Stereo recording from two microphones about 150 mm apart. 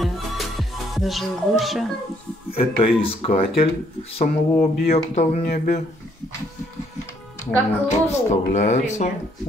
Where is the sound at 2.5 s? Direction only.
40° left (ahead or behind).